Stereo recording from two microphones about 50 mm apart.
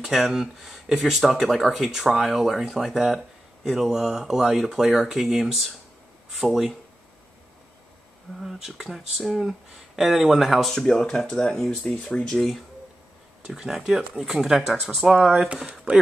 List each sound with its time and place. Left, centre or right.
0.0 s speech: centre
8.5 s speech: centre
10.7 s speech: centre
12.4 s speech: centre
13.6 s speech: centre
14.7 s speech: centre
15.3 s speech: centre